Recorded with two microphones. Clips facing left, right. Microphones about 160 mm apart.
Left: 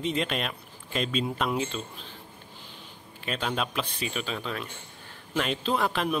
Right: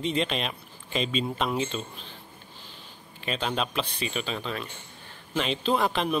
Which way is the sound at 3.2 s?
Centre (ahead or behind).